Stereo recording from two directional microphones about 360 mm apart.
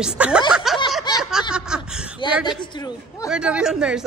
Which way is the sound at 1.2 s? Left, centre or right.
Centre.